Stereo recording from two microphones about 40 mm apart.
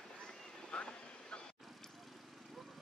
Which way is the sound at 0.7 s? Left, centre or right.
Left.